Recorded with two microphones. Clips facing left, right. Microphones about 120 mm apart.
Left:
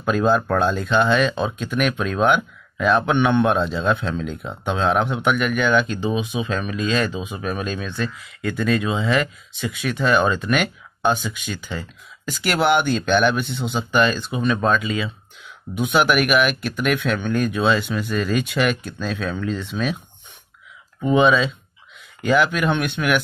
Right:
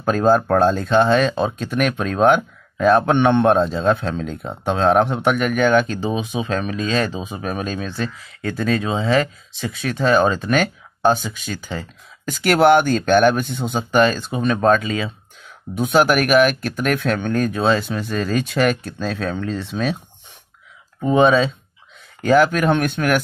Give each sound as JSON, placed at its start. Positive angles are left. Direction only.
{"t": 0.0, "sound": "speech", "side_deg": -40}
{"t": 21.0, "sound": "speech", "side_deg": -40}